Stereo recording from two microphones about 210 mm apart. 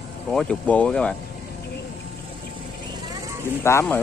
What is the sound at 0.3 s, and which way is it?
Speech, 5° left (ahead or behind).